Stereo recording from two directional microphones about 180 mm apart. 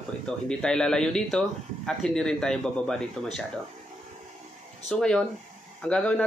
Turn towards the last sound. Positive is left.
turn(degrees=5)  # may be behind; listen again after turning